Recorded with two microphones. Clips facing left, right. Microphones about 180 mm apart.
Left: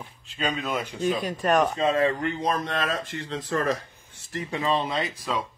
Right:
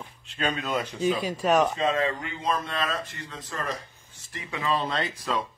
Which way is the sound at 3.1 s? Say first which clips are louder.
Left 9 dB; 80° left.